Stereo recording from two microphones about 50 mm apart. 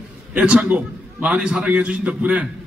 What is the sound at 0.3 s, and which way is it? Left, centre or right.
A man's voice, right.